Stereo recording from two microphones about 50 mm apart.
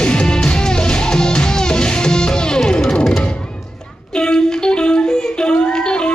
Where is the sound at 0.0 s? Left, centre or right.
Centre.